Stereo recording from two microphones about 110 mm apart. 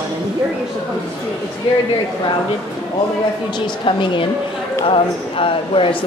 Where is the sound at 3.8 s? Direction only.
50° left (ahead or behind).